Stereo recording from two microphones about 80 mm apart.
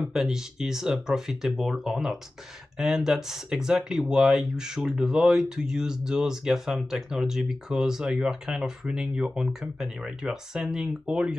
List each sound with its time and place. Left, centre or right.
0.1 s speech: centre